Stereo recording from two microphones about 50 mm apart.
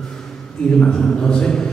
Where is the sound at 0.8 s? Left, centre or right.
Centre.